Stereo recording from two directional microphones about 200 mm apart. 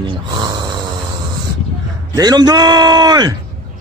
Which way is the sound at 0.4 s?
20° right (ahead or behind).